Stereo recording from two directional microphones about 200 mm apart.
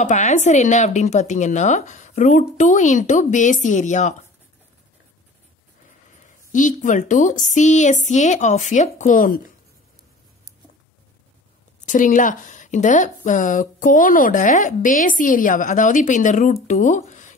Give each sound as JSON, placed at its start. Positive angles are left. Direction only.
{"t": 0.0, "sound": "speech", "side_deg": 35}
{"t": 6.2, "sound": "speech", "side_deg": 40}
{"t": 11.8, "sound": "speech", "side_deg": 40}